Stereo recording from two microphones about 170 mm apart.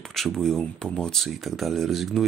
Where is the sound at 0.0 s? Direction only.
Centre (ahead or behind).